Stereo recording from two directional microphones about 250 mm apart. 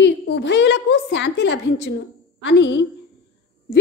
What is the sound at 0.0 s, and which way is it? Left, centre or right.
A woman's voice, left.